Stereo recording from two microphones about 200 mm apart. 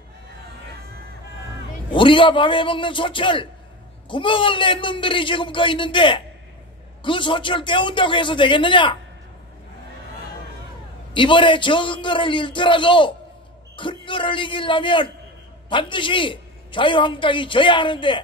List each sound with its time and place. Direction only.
2.0 s a man's voice: 25° left (ahead or behind)
11.1 s a man's voice: 25° left (ahead or behind)